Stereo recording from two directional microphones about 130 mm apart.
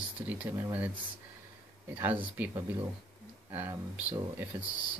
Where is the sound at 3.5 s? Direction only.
15° right (ahead or behind).